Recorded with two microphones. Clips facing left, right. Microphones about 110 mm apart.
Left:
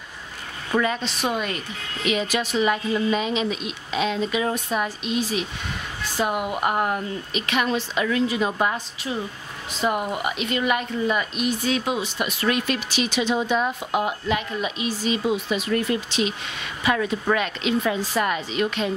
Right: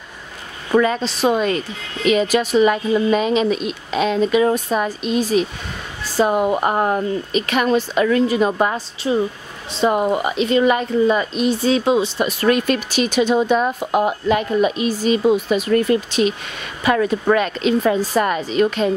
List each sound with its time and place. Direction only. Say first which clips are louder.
0.8 s a woman's voice: right 7 dB; 35° right (ahead or behind)
2.0 s a woman's voice: right 8 dB; 45° right (ahead or behind)
9.0 s a woman's voice: right 11 dB; 35° right (ahead or behind)